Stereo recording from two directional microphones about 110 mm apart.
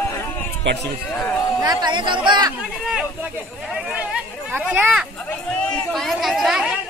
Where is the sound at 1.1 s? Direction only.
5° left (ahead or behind).